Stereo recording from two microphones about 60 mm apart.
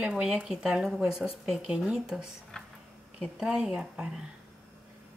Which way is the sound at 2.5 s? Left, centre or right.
Centre.